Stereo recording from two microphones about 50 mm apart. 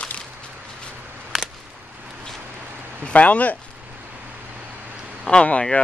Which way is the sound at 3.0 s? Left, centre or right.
Left.